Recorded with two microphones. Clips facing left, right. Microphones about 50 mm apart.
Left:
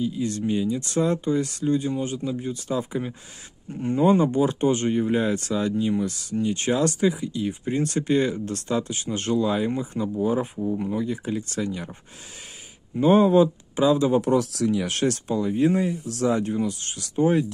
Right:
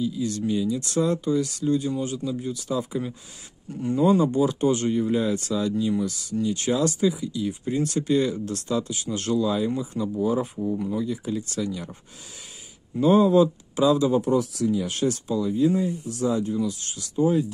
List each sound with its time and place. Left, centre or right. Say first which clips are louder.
0.0 s speech: even; left
13.0 s speech: left 1 dB; left
14.2 s speech: left 1 dB; left
15.2 s speech: even; left